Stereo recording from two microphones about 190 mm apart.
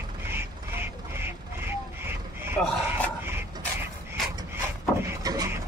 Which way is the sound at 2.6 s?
5° left (ahead or behind).